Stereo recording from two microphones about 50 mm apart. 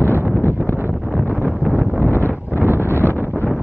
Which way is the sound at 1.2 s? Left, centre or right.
Left.